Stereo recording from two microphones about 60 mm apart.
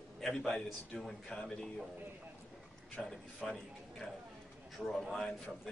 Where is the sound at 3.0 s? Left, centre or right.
Centre.